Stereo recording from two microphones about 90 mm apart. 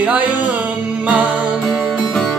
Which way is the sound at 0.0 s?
20° right (ahead or behind).